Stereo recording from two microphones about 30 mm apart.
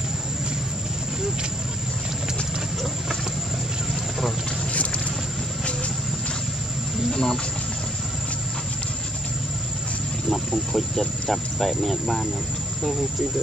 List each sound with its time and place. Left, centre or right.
7.1 s a sound: left
10.7 s speech: centre
11.5 s speech: centre